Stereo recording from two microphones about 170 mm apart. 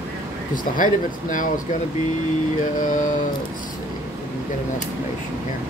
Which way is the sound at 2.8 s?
50° left (ahead or behind).